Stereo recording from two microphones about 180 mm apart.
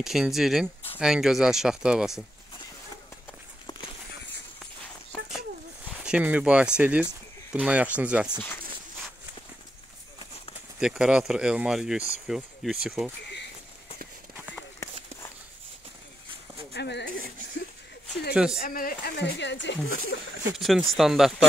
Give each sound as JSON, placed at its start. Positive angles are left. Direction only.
{"t": 0.0, "sound": "speech", "side_deg": 0}
{"t": 5.9, "sound": "speech", "side_deg": -5}
{"t": 10.8, "sound": "speech", "side_deg": -5}
{"t": 16.7, "sound": "a sound", "side_deg": 70}
{"t": 18.3, "sound": "speech", "side_deg": -5}
{"t": 18.6, "sound": "speech", "side_deg": 55}
{"t": 20.5, "sound": "speech", "side_deg": 0}